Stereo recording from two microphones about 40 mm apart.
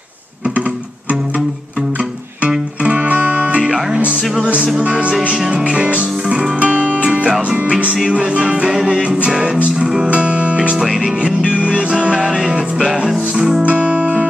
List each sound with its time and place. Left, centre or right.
2.8 s music: right
4.8 s music: right
7.4 s music: right
7.7 s music: right
10.0 s music: right; by 13.6 s centre
13.6 s guitar: right